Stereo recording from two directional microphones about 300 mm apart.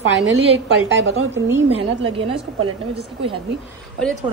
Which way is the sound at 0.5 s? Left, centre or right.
Right.